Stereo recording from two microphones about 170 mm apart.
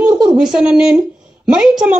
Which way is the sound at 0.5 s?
5° right (ahead or behind).